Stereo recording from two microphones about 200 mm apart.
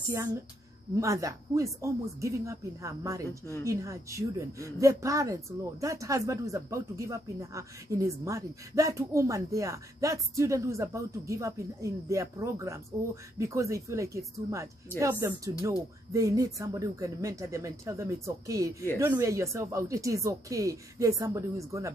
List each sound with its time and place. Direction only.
0.9 s speech: 15° right (ahead or behind)